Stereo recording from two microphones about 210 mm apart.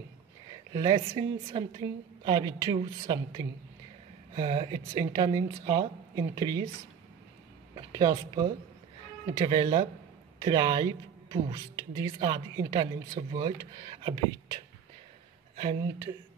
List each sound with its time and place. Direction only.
0.7 s speech: 20° right (ahead or behind)
7.7 s speech: 20° right (ahead or behind)
9.5 s speech: 25° right (ahead or behind)